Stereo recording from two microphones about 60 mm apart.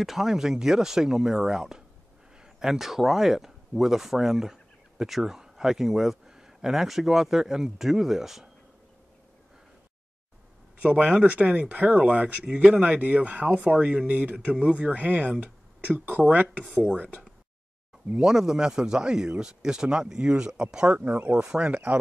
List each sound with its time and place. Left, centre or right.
0.0 s speech: centre
10.8 s speech: centre
18.2 s speech: centre